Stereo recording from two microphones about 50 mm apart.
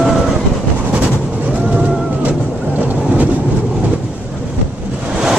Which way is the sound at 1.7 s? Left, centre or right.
Right.